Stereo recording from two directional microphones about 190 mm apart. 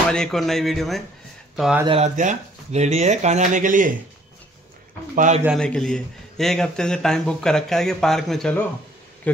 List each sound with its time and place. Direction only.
0.1 s speech: centre (ahead or behind)
1.9 s speech: 35° right (ahead or behind)
5.1 s speech: 40° right (ahead or behind)
5.6 s speech: 5° left (ahead or behind)